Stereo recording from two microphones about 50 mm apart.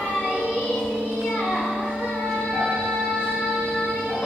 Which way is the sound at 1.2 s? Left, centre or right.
Centre.